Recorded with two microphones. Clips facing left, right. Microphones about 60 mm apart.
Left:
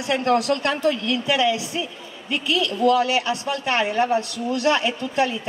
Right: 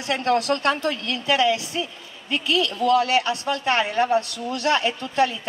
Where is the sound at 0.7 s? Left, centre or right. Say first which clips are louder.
Left 2 dB; right.